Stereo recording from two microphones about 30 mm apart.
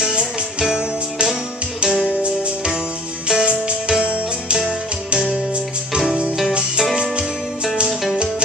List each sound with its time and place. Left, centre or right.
0.0 s music: right
3.3 s music: right